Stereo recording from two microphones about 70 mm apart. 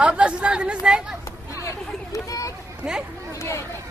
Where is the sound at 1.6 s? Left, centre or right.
Left.